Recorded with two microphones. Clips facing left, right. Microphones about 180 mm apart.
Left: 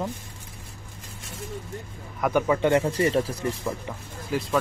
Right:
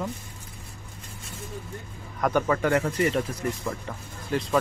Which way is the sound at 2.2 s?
10° left (ahead or behind).